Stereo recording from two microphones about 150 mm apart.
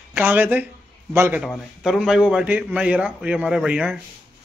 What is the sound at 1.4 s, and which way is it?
Speech, centre (ahead or behind).